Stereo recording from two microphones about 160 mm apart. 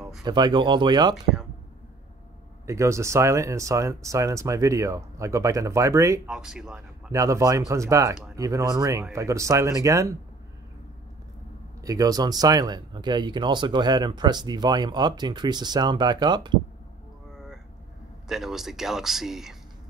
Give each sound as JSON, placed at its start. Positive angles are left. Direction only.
{"t": 0.2, "sound": "speech", "side_deg": -25}
{"t": 2.6, "sound": "speech", "side_deg": -20}
{"t": 6.2, "sound": "speech", "side_deg": -5}
{"t": 7.1, "sound": "speech", "side_deg": -20}
{"t": 11.8, "sound": "speech", "side_deg": -20}
{"t": 18.3, "sound": "speech", "side_deg": 0}